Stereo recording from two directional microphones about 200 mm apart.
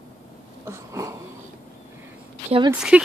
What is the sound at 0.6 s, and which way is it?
Speech, 15° right (ahead or behind).